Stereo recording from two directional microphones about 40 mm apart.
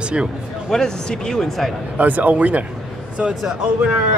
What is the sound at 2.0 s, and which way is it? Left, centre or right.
Speech, right.